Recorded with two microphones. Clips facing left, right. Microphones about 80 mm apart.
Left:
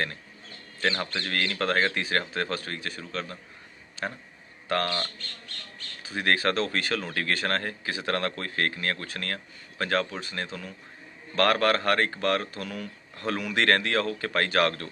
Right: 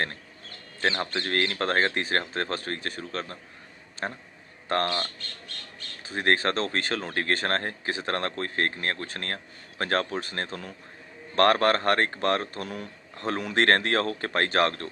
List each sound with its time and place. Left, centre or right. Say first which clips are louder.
0.7 s speech: right 1 dB; right